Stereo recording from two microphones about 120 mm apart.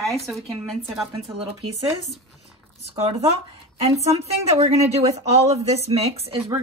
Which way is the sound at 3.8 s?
60° right (ahead or behind).